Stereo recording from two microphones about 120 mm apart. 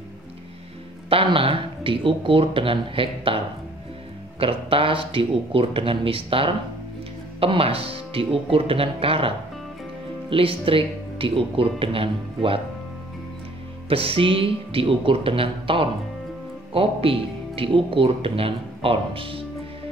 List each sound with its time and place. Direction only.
1.1 s speech: 50° right (ahead or behind)
4.4 s speech: 50° right (ahead or behind)
10.3 s speech: 50° right (ahead or behind)
13.8 s speech: 50° right (ahead or behind)